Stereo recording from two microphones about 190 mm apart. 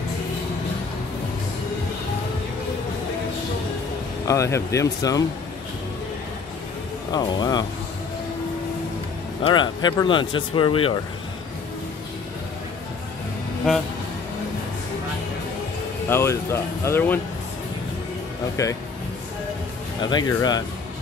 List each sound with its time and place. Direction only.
4.3 s speech: 15° left (ahead or behind)
7.1 s speech: 20° left (ahead or behind)
9.4 s speech: 25° left (ahead or behind)
16.1 s speech: 15° left (ahead or behind)
18.6 s speech: 15° left (ahead or behind)
20.0 s speech: 20° left (ahead or behind)